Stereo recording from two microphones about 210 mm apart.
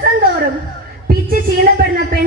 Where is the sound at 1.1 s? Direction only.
45° right (ahead or behind).